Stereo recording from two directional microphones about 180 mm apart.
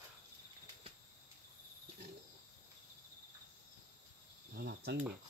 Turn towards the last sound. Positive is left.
turn(degrees=-65)  # may be behind; listen again after turning